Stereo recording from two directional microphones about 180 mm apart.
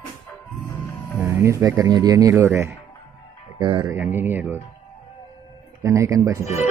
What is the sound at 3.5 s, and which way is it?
Speech, 25° right (ahead or behind).